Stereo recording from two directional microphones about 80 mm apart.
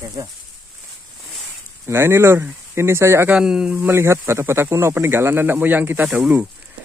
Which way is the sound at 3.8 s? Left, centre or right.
Right.